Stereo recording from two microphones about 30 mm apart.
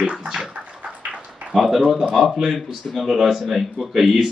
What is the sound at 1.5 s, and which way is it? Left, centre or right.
A man's voice, centre.